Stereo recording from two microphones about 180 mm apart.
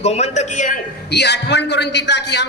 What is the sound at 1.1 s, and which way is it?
A man's voice, 70° left (ahead or behind).